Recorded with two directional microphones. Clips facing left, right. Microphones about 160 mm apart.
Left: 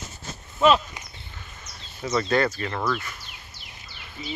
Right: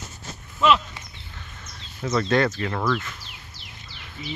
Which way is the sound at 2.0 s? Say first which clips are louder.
Right 1 dB; 5° left (ahead or behind).